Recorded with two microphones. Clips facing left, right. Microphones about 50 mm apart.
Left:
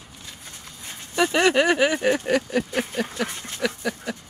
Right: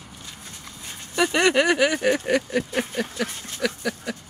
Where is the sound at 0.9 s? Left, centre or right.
Centre.